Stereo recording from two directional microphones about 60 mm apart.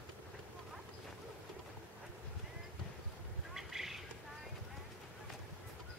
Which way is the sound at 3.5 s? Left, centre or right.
Centre.